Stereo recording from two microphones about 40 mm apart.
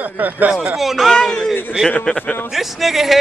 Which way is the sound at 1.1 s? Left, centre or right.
Centre.